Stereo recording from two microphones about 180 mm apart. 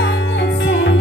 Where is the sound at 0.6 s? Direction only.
75° left (ahead or behind).